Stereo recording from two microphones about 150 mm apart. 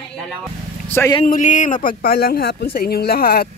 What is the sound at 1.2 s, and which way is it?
Speech, 55° left (ahead or behind).